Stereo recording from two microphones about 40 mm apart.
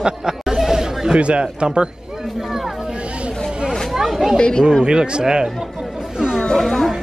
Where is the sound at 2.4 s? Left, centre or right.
Centre.